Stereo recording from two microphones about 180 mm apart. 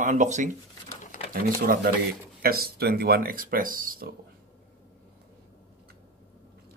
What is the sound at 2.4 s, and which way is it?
Speech, 55° right (ahead or behind).